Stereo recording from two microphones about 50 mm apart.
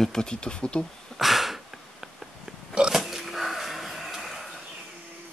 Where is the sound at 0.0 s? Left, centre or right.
Centre.